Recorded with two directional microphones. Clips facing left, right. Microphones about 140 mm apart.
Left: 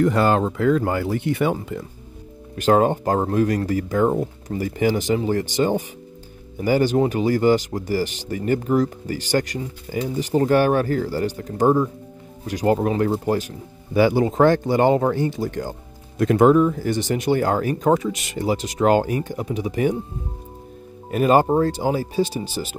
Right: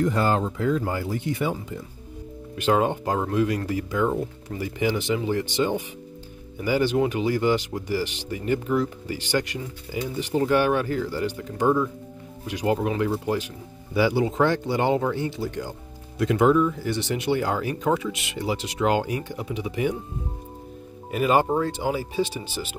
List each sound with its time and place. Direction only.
0.0 s speech: 70° left (ahead or behind)
2.5 s speech: 45° left (ahead or behind)
21.1 s speech: 40° left (ahead or behind)